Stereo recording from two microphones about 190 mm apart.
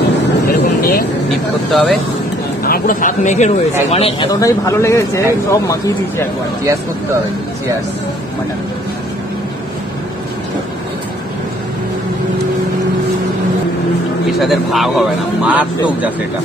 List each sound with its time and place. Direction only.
0.5 s vehicle: 55° left (ahead or behind)
1.3 s speech: centre (ahead or behind)
2.6 s speech: 50° left (ahead or behind); by 4.3 s 30° left (ahead or behind)
4.3 s speech: 15° left (ahead or behind)
14.4 s speech: centre (ahead or behind)